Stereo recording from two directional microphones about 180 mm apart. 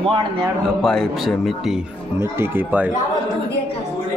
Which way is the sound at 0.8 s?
Centre (ahead or behind).